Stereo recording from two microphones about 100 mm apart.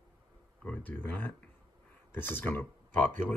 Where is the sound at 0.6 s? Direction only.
15° left (ahead or behind).